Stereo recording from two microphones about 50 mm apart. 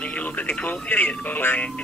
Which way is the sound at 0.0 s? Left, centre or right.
Left.